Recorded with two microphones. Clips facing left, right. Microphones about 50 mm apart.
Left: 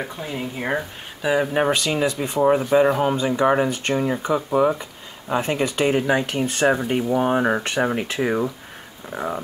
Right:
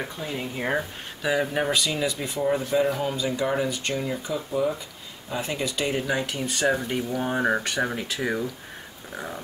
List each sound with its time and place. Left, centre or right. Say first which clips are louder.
0.0 s speech: left 3 dB; centre
1.3 s speech: left 4 dB; centre
1.6 s speech: left 5 dB; left